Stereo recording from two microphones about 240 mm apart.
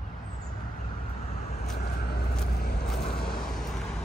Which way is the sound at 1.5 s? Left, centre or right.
Left.